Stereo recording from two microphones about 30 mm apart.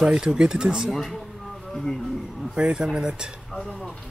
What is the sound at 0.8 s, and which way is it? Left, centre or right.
Speech, centre.